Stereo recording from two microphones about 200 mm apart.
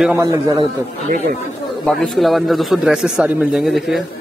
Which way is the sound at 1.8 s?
Centre (ahead or behind).